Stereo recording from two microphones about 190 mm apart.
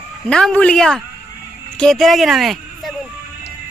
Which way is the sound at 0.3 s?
5° left (ahead or behind).